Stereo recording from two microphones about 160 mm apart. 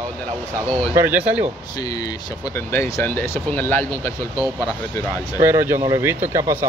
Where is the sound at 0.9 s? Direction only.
10° right (ahead or behind).